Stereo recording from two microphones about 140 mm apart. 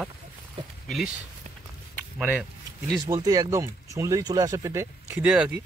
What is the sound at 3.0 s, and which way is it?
Speech, 25° right (ahead or behind).